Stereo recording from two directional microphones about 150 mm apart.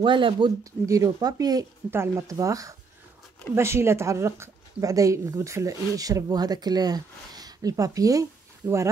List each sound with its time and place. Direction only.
0.0 s speech: 35° right (ahead or behind)
0.8 s a woman's voice: 20° right (ahead or behind)